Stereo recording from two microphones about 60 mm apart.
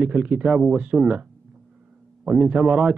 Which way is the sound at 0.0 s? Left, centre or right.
Right.